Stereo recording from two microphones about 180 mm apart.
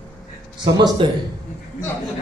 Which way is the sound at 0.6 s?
25° right (ahead or behind).